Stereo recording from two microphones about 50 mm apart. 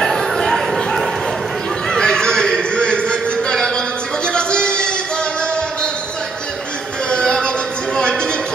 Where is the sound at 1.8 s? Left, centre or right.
Centre.